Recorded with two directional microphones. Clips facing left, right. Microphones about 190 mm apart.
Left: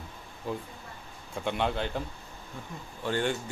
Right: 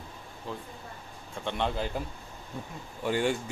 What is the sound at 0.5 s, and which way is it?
Speech, 15° left (ahead or behind).